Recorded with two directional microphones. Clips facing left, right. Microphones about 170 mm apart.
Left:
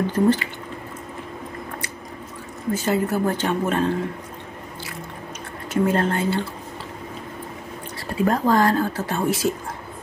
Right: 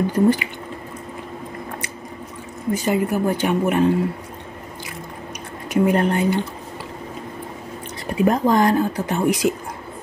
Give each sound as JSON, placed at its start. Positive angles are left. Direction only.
{"t": 0.0, "sound": "speech", "side_deg": -10}
{"t": 2.7, "sound": "speech", "side_deg": -15}
{"t": 5.7, "sound": "speech", "side_deg": -15}
{"t": 8.1, "sound": "speech", "side_deg": -20}